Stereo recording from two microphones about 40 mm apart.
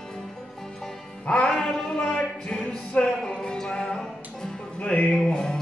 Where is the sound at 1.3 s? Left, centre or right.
Left.